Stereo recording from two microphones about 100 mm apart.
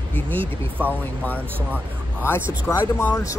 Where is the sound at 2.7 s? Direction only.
25° left (ahead or behind).